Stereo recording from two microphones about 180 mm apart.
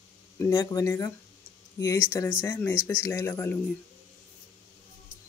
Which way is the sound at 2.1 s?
15° left (ahead or behind).